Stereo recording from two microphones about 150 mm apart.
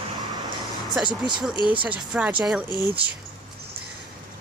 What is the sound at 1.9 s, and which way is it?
Speech, 10° right (ahead or behind).